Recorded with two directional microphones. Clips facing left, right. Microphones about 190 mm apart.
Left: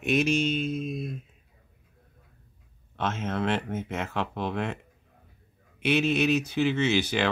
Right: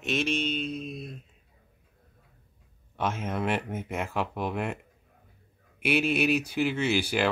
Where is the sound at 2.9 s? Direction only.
10° right (ahead or behind).